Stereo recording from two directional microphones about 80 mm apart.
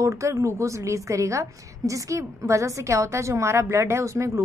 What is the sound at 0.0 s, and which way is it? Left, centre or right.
A woman's voice, right.